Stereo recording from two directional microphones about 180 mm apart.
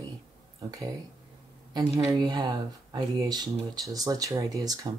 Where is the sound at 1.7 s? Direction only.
15° right (ahead or behind).